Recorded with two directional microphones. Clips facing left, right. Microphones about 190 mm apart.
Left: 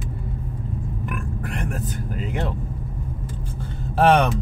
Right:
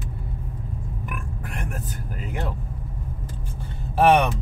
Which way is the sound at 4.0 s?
10° right (ahead or behind).